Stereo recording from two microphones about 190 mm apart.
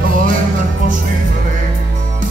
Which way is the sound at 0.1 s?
45° right (ahead or behind).